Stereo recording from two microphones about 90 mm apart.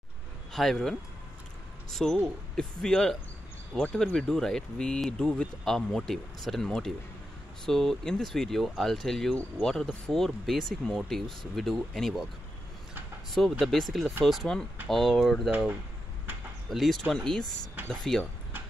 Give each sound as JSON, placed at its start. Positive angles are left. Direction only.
{"t": 0.5, "sound": "speech", "side_deg": 5}
{"t": 13.3, "sound": "speech", "side_deg": 5}
{"t": 16.3, "sound": "door", "side_deg": -20}
{"t": 16.6, "sound": "speech", "side_deg": 0}